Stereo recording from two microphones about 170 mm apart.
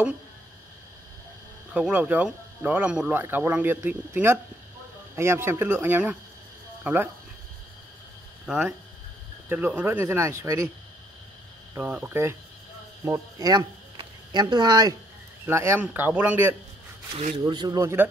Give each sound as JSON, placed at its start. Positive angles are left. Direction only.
{"t": 1.7, "sound": "speech", "side_deg": -5}
{"t": 8.5, "sound": "speech", "side_deg": -10}
{"t": 11.7, "sound": "speech", "side_deg": -10}
{"t": 17.5, "sound": "speech", "side_deg": -25}